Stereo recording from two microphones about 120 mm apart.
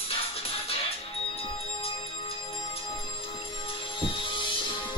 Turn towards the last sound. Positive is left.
turn(degrees=45)  # may be behind; listen again after turning